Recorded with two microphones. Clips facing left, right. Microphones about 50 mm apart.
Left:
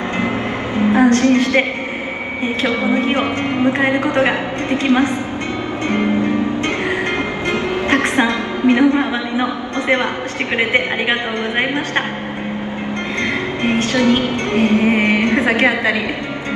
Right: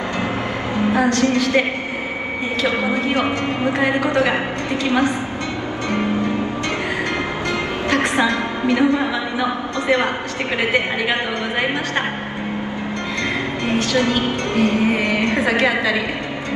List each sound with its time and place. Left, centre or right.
0.7 s music: left
2.6 s a woman's voice: left
7.9 s music: left
13.7 s speech: left